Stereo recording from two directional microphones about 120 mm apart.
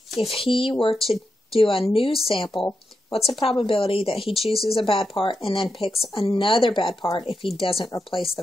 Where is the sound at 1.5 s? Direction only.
50° left (ahead or behind).